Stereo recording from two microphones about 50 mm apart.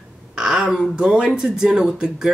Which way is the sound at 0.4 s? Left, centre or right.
Centre.